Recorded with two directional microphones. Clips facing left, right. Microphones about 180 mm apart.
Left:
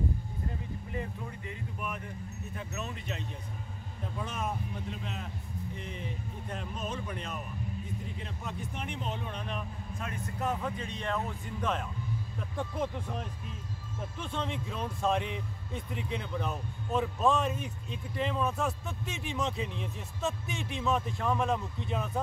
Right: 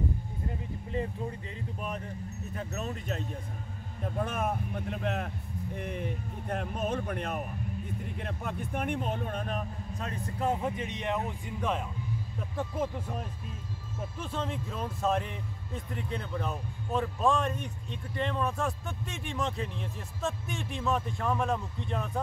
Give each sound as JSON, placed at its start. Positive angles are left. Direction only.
{"t": 0.9, "sound": "a man's voice", "side_deg": -30}
{"t": 4.2, "sound": "a man's voice", "side_deg": -55}